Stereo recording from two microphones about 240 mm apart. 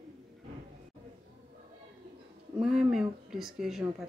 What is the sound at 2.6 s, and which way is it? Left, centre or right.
Speech, centre.